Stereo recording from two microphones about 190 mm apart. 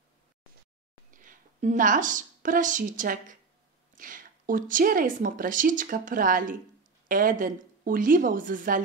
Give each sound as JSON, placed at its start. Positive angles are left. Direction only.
{"t": 1.1, "sound": "a woman's voice", "side_deg": -45}